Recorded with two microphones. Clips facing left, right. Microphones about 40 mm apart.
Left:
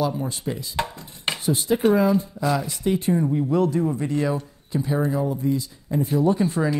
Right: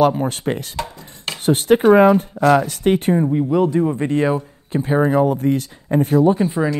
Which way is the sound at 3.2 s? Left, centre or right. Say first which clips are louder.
Right 4 dB; right.